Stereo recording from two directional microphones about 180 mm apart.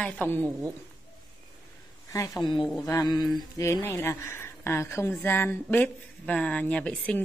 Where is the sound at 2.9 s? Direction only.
20° left (ahead or behind).